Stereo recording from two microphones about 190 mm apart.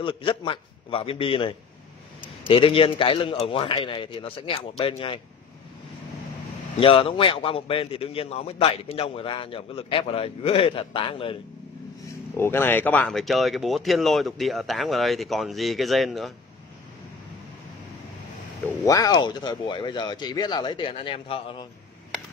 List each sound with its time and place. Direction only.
0.0 s a man's voice: 25° left (ahead or behind)
6.8 s a man's voice: 30° left (ahead or behind)
12.4 s speech: 10° left (ahead or behind)
18.7 s a man's voice: 20° left (ahead or behind)